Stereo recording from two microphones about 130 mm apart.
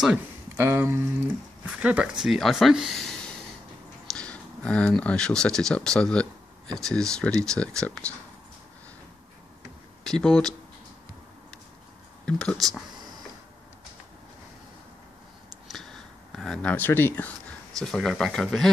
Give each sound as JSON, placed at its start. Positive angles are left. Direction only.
{"t": 0.6, "sound": "speech", "side_deg": -15}
{"t": 10.0, "sound": "speech", "side_deg": 5}
{"t": 12.3, "sound": "speech", "side_deg": 5}
{"t": 15.7, "sound": "a sound", "side_deg": 5}
{"t": 17.7, "sound": "speech", "side_deg": 0}